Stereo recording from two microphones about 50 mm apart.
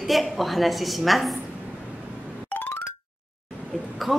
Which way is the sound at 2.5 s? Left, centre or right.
Left.